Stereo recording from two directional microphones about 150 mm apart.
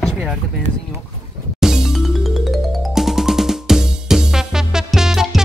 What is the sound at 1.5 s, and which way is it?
Music, 5° right (ahead or behind).